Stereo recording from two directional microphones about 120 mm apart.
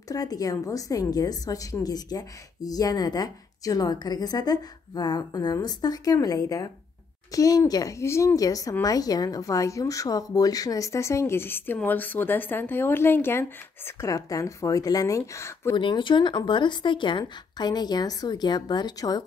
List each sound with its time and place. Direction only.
0.1 s a woman's voice: 30° left (ahead or behind)
15.7 s a woman's voice: 40° left (ahead or behind)